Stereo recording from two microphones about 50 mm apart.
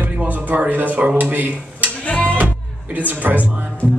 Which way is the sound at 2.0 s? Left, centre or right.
Left.